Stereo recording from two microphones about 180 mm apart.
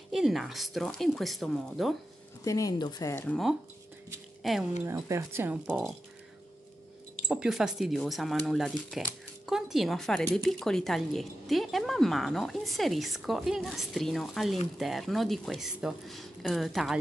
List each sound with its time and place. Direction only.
0.1 s speech: centre (ahead or behind)
2.4 s speech: 20° left (ahead or behind)
3.3 s speech: centre (ahead or behind)
4.8 s speech: 15° right (ahead or behind)
7.2 s speech: 5° right (ahead or behind)